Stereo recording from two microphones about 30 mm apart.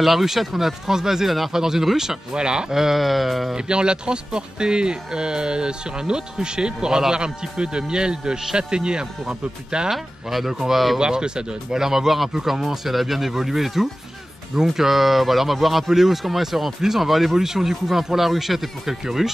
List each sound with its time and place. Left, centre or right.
0.0 s speech: centre
2.3 s speech: right
2.7 s speech: centre
3.5 s speech: right
9.8 s speech: centre
11.0 s speech: right
11.8 s speech: centre